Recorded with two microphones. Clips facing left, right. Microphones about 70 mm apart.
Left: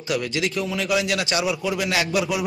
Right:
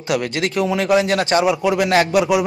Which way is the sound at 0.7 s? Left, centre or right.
Right.